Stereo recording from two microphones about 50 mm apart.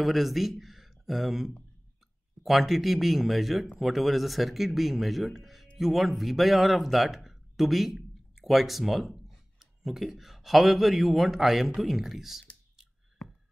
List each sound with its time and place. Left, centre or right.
0.0 s speech: centre